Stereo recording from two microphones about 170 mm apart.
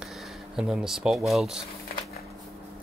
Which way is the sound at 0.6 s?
5° right (ahead or behind).